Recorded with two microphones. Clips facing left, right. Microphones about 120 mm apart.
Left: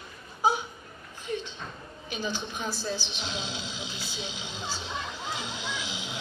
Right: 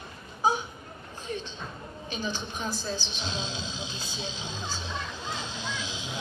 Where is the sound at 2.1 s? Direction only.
15° left (ahead or behind).